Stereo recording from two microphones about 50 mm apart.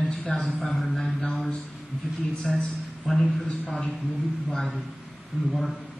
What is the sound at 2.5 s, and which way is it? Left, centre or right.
A man's voice, centre.